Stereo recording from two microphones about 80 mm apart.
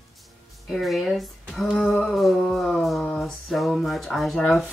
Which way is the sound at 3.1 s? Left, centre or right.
Centre.